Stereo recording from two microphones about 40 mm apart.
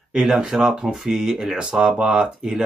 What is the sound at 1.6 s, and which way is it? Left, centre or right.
Speech, right.